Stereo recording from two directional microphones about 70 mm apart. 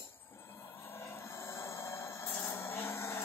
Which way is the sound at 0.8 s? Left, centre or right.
Left.